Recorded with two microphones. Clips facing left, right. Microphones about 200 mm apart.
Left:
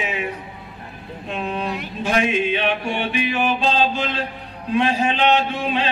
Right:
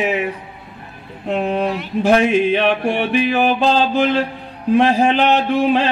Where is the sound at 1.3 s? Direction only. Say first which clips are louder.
Right 7 dB; 60° right (ahead or behind).